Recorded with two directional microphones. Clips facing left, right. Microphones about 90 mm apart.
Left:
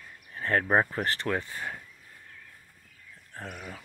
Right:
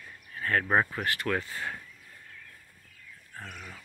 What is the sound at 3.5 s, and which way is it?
Speech, 15° left (ahead or behind).